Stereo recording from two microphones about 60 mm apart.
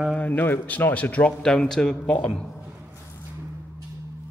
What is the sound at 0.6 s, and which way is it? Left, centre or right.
Speech, left.